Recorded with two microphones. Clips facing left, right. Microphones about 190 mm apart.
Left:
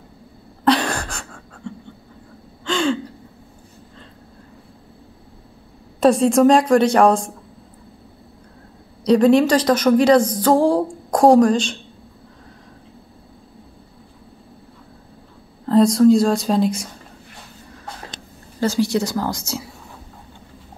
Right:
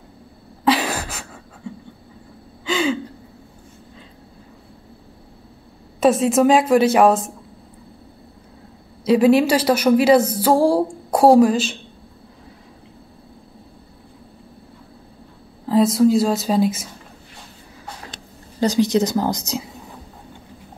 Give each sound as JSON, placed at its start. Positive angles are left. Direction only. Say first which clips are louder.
{"t": 0.7, "sound": "a sound", "louder": "left 1 dB", "side_deg": -5}
{"t": 2.6, "sound": "gasp", "louder": "left 1 dB", "side_deg": -5}
{"t": 5.9, "sound": "a woman's voice", "louder": "left 1 dB", "side_deg": 0}
{"t": 9.0, "sound": "a woman's voice", "louder": "left 1 dB", "side_deg": -5}
{"t": 15.6, "sound": "a woman's voice", "louder": "left 2 dB", "side_deg": -5}
{"t": 18.6, "sound": "speech", "louder": "right 2 dB", "side_deg": -20}